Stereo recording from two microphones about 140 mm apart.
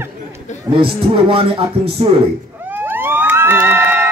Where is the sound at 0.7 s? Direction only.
40° right (ahead or behind).